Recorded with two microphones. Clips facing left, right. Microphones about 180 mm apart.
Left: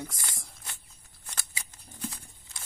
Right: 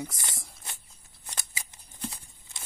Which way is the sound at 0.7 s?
15° right (ahead or behind).